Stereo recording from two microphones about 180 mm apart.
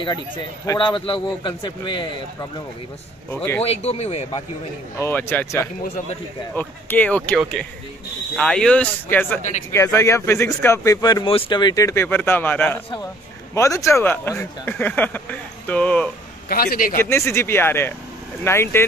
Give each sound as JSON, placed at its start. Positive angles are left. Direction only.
{"t": 0.7, "sound": "a man's voice", "side_deg": 25}
{"t": 3.3, "sound": "speech", "side_deg": 10}
{"t": 3.6, "sound": "speech", "side_deg": 35}
{"t": 5.0, "sound": "speech", "side_deg": 10}
{"t": 8.4, "sound": "speech", "side_deg": 5}
{"t": 16.4, "sound": "a man's voice", "side_deg": 55}
{"t": 17.0, "sound": "speech", "side_deg": 15}